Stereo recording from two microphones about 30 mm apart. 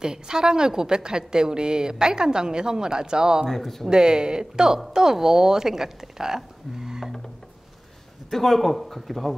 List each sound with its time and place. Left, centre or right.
0.0 s a woman's voice: right
3.4 s speech: centre
3.8 s a woman's voice: right
8.3 s speech: centre